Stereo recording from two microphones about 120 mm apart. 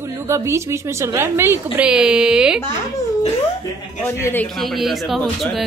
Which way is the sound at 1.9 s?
5° right (ahead or behind).